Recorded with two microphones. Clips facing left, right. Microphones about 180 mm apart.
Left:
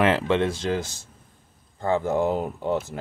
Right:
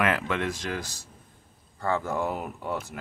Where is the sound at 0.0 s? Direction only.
30° left (ahead or behind).